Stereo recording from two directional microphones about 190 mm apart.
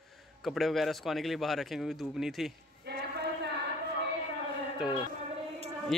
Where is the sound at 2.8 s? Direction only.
55° right (ahead or behind).